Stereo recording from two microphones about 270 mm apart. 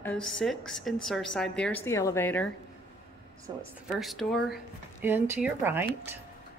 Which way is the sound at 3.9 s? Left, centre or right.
Centre.